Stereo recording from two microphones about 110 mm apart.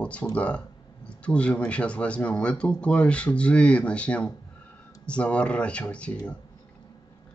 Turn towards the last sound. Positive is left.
turn(degrees=10)  # may be behind; listen again after turning